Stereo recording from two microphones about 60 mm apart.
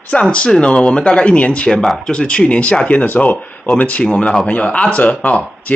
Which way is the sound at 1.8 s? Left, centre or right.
Centre.